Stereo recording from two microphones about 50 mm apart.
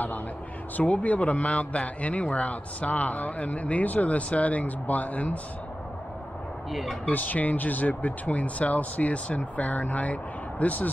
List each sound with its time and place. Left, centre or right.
0.7 s speech: left
6.7 s speech: centre
7.1 s speech: left